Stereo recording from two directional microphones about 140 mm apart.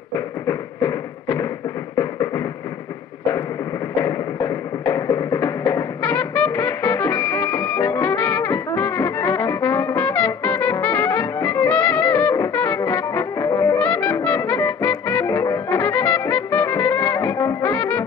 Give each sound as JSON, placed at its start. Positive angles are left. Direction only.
{"t": 0.5, "sound": "a sound", "side_deg": 20}
{"t": 2.0, "sound": "music", "side_deg": 20}
{"t": 3.9, "sound": "music", "side_deg": 20}